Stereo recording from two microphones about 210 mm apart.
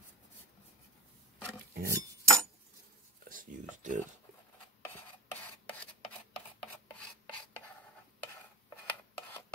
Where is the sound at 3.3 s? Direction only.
40° right (ahead or behind).